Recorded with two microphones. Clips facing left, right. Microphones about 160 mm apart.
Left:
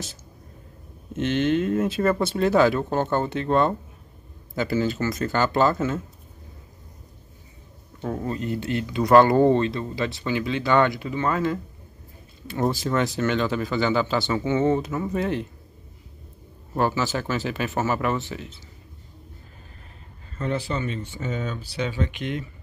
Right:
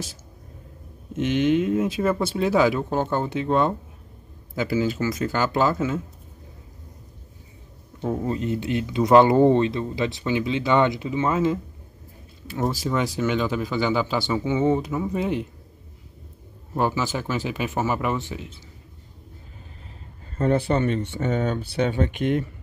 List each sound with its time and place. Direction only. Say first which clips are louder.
1.1 s speech: right 2 dB; 10° right (ahead or behind)
8.0 s speech: right 3 dB; 15° right (ahead or behind)
12.7 s speech: left 1 dB; 10° right (ahead or behind)
16.7 s speech: even; 10° right (ahead or behind)
20.3 s speech: right 6 dB; 50° right (ahead or behind)